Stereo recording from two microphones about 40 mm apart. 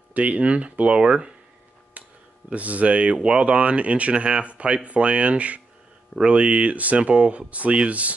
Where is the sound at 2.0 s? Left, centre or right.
Right.